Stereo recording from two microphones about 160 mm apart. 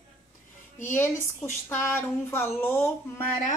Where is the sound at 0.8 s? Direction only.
15° left (ahead or behind).